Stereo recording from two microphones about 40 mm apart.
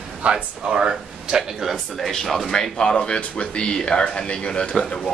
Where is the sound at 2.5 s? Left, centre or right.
Centre.